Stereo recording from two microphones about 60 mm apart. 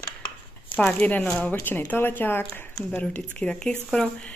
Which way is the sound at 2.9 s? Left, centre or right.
Centre.